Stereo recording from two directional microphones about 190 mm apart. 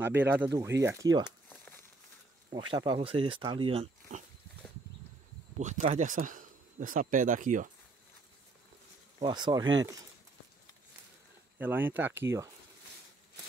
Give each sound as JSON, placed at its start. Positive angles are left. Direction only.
{"t": 0.0, "sound": "speech", "side_deg": -10}
{"t": 1.2, "sound": "crumpling", "side_deg": 10}
{"t": 2.5, "sound": "speech", "side_deg": -25}
{"t": 5.6, "sound": "speech", "side_deg": -40}
{"t": 9.2, "sound": "speech", "side_deg": -25}
{"t": 11.5, "sound": "speech", "side_deg": -10}